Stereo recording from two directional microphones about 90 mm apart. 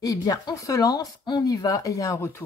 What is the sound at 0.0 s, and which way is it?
A woman's voice, 45° left (ahead or behind).